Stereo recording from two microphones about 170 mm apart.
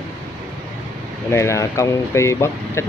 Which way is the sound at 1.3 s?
15° left (ahead or behind).